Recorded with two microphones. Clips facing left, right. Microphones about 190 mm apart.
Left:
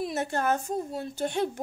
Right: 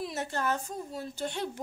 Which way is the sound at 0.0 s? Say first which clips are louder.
Left 4 dB; 50° left (ahead or behind).